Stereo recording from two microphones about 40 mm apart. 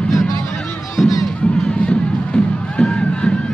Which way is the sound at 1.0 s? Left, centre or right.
Centre.